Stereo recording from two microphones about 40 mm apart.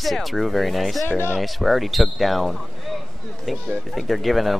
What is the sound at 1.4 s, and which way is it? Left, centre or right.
Speech, centre.